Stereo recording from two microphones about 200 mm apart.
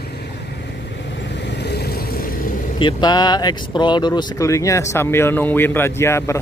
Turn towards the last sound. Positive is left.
turn(degrees=15)  # may be behind; listen again after turning